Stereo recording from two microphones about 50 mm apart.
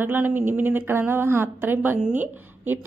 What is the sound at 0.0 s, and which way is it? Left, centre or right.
A woman's voice, right.